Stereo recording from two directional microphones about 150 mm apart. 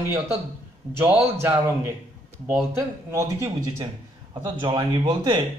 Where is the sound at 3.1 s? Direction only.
20° right (ahead or behind).